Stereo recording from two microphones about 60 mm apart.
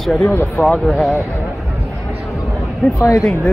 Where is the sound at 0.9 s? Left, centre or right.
Centre.